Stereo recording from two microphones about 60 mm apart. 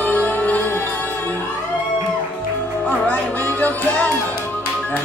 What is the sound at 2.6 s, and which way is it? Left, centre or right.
Music, left.